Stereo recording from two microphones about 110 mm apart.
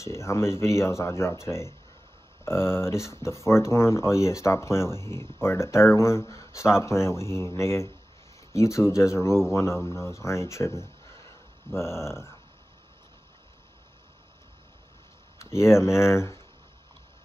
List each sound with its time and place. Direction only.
0.0 s speech: 25° left (ahead or behind)
15.5 s speech: 25° left (ahead or behind)